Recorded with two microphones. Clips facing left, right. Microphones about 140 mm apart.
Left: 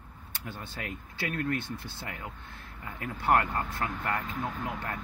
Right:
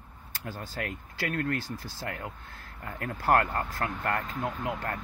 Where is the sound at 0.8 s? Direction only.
50° right (ahead or behind).